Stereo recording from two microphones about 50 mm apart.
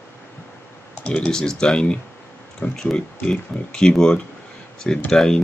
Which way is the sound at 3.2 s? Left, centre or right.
Centre.